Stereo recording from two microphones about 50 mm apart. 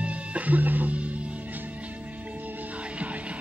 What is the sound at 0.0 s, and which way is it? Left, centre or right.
Music, right.